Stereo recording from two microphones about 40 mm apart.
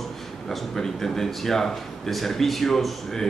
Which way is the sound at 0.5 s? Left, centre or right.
Centre.